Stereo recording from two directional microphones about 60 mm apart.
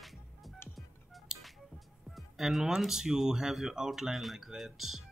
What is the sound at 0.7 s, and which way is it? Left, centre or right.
Telephone dialing, centre.